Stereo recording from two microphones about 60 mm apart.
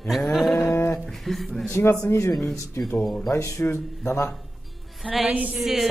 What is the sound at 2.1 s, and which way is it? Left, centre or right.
Speech, left.